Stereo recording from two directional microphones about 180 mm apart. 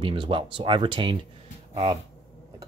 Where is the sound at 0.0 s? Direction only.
30° right (ahead or behind).